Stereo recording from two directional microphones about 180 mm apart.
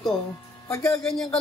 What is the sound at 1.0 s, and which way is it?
Speech, 5° left (ahead or behind).